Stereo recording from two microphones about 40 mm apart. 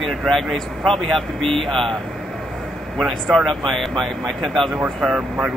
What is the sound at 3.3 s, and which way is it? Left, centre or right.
Speech, centre.